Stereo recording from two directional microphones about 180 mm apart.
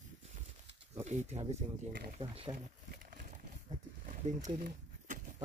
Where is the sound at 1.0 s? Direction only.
40° right (ahead or behind).